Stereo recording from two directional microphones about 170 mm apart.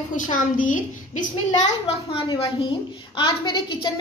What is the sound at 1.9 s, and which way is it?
A woman's voice, 35° left (ahead or behind).